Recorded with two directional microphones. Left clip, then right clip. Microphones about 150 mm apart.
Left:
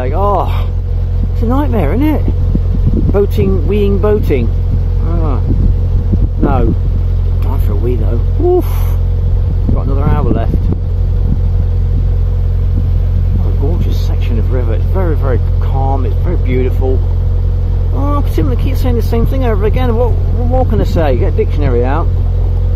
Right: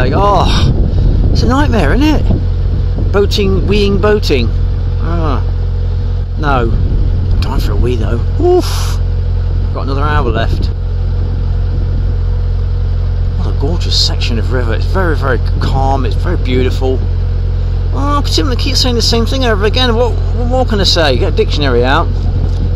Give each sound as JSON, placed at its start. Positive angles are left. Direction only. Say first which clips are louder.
{"t": 0.0, "sound": "speech", "louder": "right 3 dB", "side_deg": -10}
{"t": 6.4, "sound": "speech", "louder": "right 2 dB", "side_deg": -15}
{"t": 9.8, "sound": "speech", "louder": "right 5 dB", "side_deg": -10}
{"t": 14.0, "sound": "speech", "louder": "right 7 dB", "side_deg": -15}
{"t": 17.9, "sound": "speech", "louder": "right 4 dB", "side_deg": -10}